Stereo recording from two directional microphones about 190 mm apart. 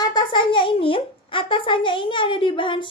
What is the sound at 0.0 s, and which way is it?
Speech, 25° left (ahead or behind).